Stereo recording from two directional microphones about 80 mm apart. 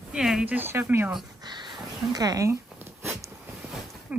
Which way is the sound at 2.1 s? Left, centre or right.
Right.